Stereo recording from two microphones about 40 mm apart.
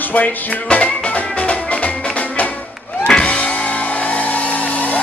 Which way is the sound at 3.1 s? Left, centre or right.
Left.